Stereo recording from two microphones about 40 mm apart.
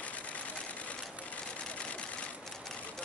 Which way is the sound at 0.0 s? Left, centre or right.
Left.